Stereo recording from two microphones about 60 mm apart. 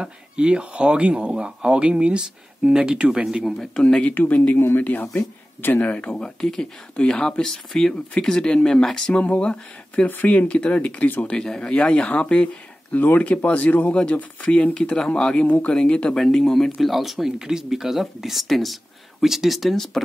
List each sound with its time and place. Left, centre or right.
0.0 s speech: centre
3.8 s speech: centre
4.6 s speech: left
5.6 s speech: left; by 9.1 s centre
9.1 s speech: left
10.0 s speech: left
11.2 s speech: centre
12.9 s speech: left; by 20.0 s centre